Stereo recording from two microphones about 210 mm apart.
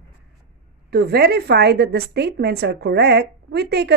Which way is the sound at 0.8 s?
50° right (ahead or behind).